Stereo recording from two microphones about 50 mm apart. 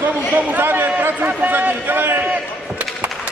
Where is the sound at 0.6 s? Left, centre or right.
Right.